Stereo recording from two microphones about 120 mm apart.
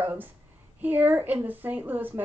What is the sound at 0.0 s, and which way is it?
A child's voice, 15° right (ahead or behind).